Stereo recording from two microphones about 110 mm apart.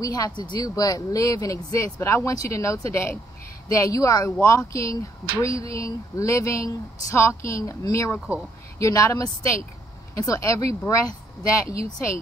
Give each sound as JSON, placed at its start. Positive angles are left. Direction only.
{"t": 0.0, "sound": "speech", "side_deg": 35}